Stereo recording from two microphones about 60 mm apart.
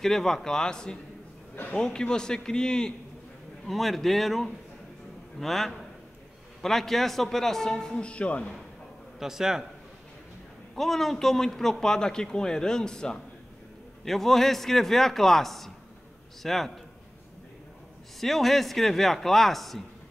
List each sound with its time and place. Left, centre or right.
0.0 s a man's voice: centre
1.5 s a man's voice: left
1.8 s a man's voice: centre
3.6 s a man's voice: centre; by 8.5 s left
9.2 s a man's voice: centre
10.8 s a man's voice: centre
18.2 s a man's voice: centre